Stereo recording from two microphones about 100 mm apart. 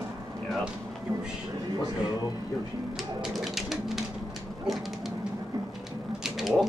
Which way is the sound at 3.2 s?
5° right (ahead or behind).